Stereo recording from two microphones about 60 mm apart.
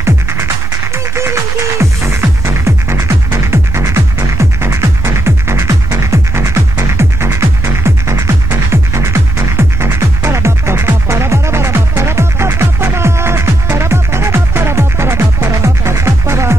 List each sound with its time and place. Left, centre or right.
0.0 s music: right